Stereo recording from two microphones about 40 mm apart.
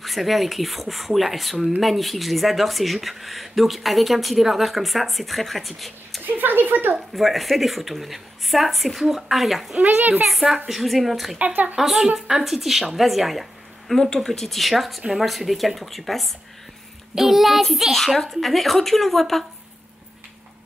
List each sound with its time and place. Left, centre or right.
0.0 s speech: centre
6.2 s a sound: right
7.2 s speech: centre
9.8 s a woman's voice: right
10.3 s speech: centre
11.3 s speech: right
11.7 s a woman's voice: centre
14.1 s speech: centre